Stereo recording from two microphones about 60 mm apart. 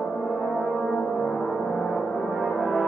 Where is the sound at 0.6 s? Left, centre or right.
Left.